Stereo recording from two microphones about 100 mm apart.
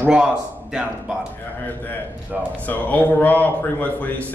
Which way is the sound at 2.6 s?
15° left (ahead or behind).